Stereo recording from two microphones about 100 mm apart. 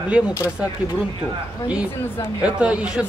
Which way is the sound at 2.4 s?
10° right (ahead or behind).